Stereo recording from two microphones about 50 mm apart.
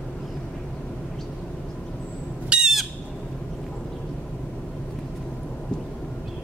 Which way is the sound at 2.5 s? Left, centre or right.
Right.